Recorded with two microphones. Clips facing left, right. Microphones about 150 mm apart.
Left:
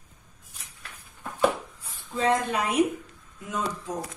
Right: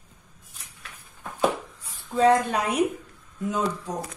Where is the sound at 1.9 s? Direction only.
40° right (ahead or behind).